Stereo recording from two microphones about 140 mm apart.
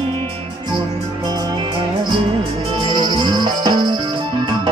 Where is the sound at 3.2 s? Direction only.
30° right (ahead or behind).